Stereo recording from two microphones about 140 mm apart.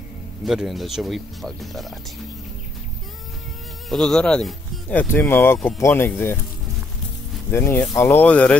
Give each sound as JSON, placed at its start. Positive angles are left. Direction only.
{"t": 0.5, "sound": "speech", "side_deg": 0}
{"t": 3.9, "sound": "speech", "side_deg": 5}
{"t": 7.5, "sound": "speech", "side_deg": 15}